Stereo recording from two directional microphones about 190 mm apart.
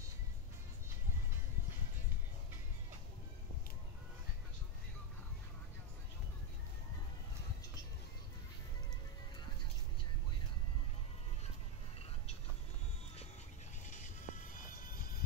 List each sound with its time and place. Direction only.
13.8 s music: 40° left (ahead or behind)